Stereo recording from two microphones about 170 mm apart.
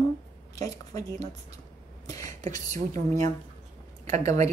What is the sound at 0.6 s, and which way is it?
Speech, 20° left (ahead or behind).